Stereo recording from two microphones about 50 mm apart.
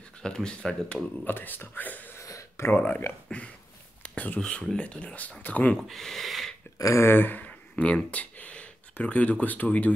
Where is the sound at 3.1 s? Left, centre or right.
Left.